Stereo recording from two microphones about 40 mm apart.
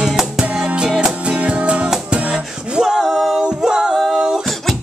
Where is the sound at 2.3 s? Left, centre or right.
Centre.